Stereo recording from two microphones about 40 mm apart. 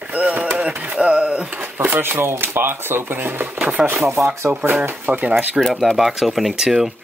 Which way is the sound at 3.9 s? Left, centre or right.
Right.